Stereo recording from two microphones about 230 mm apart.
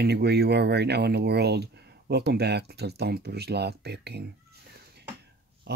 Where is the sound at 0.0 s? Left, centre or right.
Right.